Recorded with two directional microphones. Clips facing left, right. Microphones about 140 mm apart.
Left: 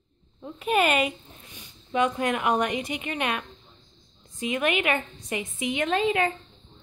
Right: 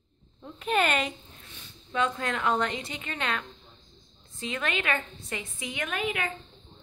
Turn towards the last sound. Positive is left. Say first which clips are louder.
# left 8 dB
turn(degrees=30)  # may be behind; listen again after turning